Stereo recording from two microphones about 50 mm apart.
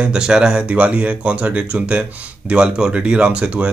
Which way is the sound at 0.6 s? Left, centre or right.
Right.